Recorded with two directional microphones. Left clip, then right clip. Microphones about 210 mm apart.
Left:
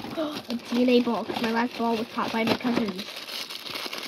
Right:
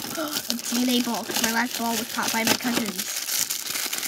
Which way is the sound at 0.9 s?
20° right (ahead or behind).